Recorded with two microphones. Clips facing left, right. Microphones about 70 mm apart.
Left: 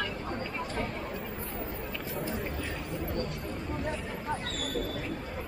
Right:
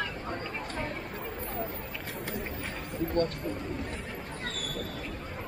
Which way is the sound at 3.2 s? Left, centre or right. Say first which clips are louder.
Right 9 dB; right.